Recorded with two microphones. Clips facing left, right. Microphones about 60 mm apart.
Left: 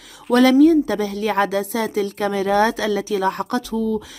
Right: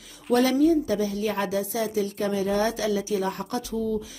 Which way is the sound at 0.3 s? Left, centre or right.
Left.